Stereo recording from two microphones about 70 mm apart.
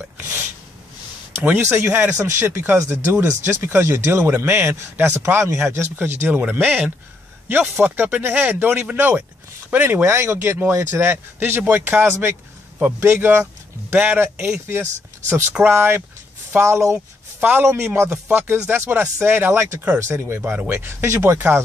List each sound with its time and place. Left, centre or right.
1.4 s a man's voice: right
17.4 s a man's voice: right
17.6 s speech: right